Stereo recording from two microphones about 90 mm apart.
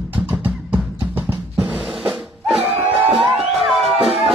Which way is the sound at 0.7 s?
20° right (ahead or behind).